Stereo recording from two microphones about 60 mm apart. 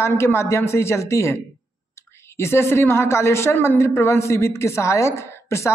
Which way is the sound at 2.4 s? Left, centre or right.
Left.